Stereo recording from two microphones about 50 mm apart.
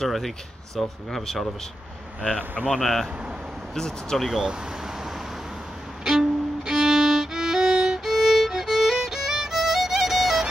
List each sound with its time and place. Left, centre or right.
0.0 s speech: centre
2.2 s speech: left
2.7 s speech: centre
4.3 s speech: centre
6.0 s violin: centre